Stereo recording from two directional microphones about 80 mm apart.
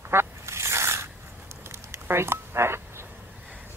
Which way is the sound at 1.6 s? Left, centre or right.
Right.